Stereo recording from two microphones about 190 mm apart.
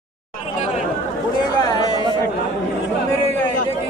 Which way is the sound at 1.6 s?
20° left (ahead or behind).